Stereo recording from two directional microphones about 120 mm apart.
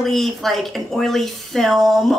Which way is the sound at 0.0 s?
Centre (ahead or behind).